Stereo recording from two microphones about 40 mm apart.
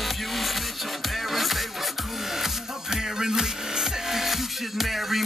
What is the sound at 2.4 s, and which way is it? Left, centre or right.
Music, centre.